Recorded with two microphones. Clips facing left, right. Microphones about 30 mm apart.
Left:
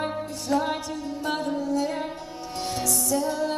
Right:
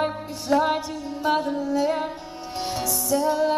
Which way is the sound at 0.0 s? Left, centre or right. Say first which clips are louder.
Right 3 dB; centre.